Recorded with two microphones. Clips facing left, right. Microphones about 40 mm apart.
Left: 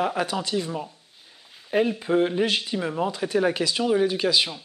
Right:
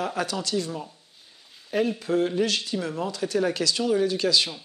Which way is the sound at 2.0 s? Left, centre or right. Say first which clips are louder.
Left 2 dB; left.